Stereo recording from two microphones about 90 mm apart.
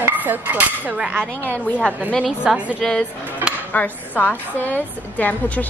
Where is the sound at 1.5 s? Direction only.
20° left (ahead or behind).